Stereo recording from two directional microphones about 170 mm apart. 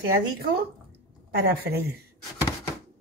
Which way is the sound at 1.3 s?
65° right (ahead or behind).